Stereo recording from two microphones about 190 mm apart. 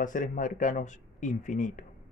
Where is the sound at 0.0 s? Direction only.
45° left (ahead or behind).